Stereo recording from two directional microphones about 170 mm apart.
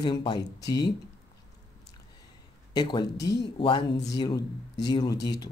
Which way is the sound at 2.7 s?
25° left (ahead or behind).